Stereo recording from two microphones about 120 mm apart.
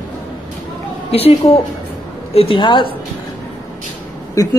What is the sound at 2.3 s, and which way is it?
Speech, 50° left (ahead or behind).